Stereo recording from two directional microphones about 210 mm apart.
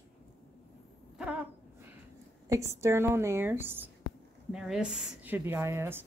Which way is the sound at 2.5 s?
15° right (ahead or behind).